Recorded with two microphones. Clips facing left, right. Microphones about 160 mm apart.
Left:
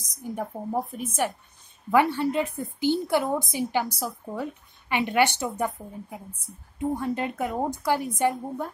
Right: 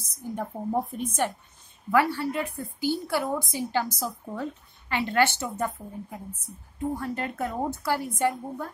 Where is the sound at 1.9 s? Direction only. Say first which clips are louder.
Left 2 dB; 20° left (ahead or behind).